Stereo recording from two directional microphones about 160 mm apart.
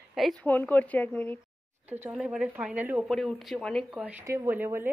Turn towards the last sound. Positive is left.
turn(degrees=-15)  # may be behind; listen again after turning